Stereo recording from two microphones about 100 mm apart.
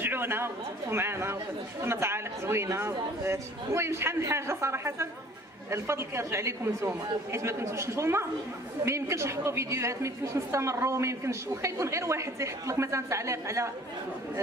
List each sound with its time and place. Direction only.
0.0 s a woman's voice: 20° right (ahead or behind)